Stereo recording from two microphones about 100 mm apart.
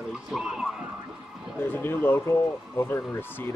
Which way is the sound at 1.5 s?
20° left (ahead or behind).